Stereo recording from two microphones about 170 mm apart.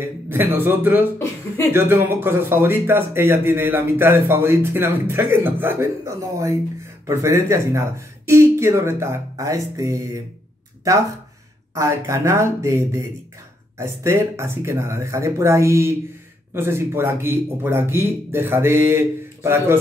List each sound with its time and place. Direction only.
0.0 s speech: 15° right (ahead or behind)